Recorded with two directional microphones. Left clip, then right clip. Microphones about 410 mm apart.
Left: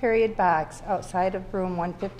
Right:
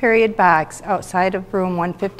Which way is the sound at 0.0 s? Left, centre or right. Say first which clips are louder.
Right 8 dB; right.